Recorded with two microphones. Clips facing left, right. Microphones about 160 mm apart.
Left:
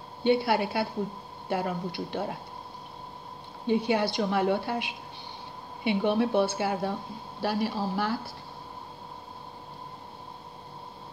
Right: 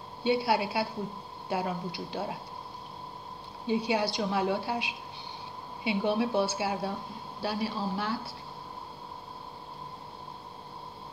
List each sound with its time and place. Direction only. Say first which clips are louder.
0.2 s speech: left 3 dB; 55° left (ahead or behind)
3.6 s speech: left 3 dB; 55° left (ahead or behind)